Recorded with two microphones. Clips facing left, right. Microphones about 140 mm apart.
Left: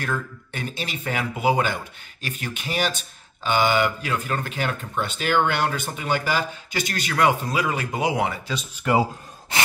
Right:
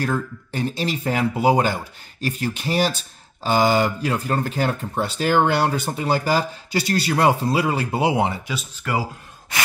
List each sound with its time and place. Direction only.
0.0 s speech: 35° right (ahead or behind)
8.8 s a man's voice: 25° left (ahead or behind)